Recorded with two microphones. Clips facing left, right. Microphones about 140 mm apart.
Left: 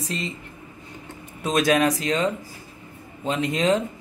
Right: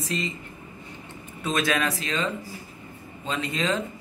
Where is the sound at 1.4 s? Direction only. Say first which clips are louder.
Left 6 dB; 40° left (ahead or behind).